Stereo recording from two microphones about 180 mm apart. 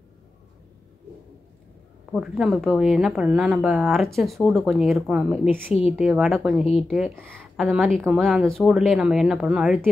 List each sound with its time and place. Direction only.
2.1 s a woman's voice: 5° right (ahead or behind)
5.7 s a woman's voice: 35° left (ahead or behind)
5.9 s a woman's voice: centre (ahead or behind)
6.6 s a woman's voice: 35° left (ahead or behind)
6.9 s a woman's voice: centre (ahead or behind)